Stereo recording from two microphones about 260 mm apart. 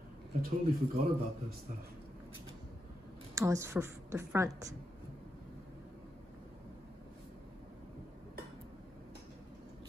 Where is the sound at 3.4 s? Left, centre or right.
Centre.